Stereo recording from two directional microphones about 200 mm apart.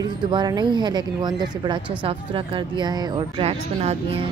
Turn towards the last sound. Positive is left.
turn(degrees=-30)  # may be behind; listen again after turning